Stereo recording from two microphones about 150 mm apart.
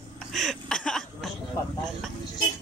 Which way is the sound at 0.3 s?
Centre (ahead or behind).